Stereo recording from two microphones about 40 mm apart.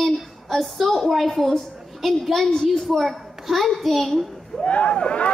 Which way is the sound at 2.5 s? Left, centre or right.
Centre.